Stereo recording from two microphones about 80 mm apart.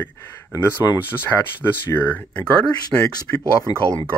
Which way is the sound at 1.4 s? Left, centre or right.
Left.